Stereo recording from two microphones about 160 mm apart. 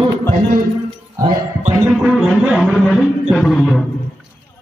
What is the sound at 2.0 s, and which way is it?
A man's voice, 5° right (ahead or behind).